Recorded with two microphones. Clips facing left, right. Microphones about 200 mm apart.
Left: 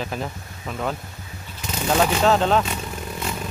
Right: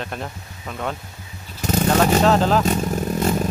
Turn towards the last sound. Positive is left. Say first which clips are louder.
# right 9 dB
turn(degrees=-40)  # may be behind; listen again after turning